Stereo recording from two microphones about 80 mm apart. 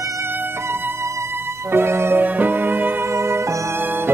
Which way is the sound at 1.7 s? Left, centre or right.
Right.